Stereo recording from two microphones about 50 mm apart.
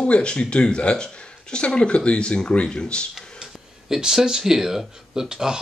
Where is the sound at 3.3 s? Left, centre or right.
Centre.